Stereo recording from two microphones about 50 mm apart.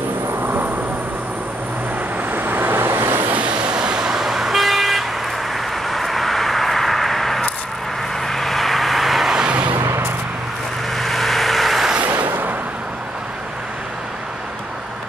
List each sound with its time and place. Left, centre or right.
0.3 s vehicle: right
2.3 s vehicle: right
3.3 s vehicle: right; by 9.3 s centre
9.3 s vehicle: centre
9.8 s vehicle: right
11.0 s vehicle: centre
12.2 s vehicle: right